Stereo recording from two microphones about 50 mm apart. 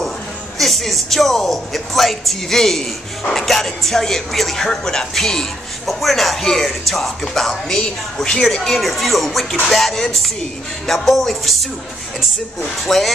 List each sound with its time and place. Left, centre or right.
0.6 s speech: centre
12.8 s speech: centre